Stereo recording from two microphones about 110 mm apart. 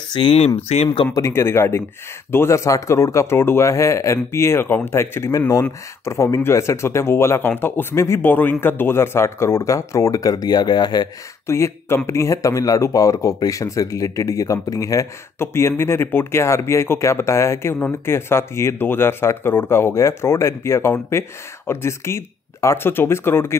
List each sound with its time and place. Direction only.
0.1 s speech: 50° left (ahead or behind)
0.7 s speech: 65° left (ahead or behind)
1.1 s speech: 25° left (ahead or behind); by 11.1 s 40° left (ahead or behind)
11.4 s speech: 25° left (ahead or behind)